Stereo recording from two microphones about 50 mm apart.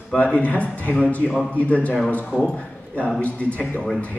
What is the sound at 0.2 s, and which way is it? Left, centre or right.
A man's voice, left.